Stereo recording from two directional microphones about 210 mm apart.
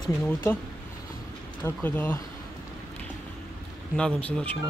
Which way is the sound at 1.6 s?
10° left (ahead or behind).